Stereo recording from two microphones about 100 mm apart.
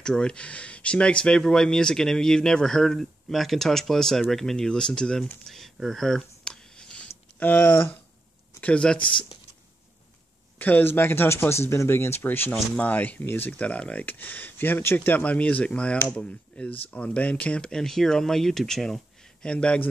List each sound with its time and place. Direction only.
0.0 s speech: 10° left (ahead or behind)
5.5 s a sound: 5° left (ahead or behind)
7.3 s speech: 15° left (ahead or behind)
9.0 s speech: 55° left (ahead or behind)
10.6 s speech: 20° left (ahead or behind)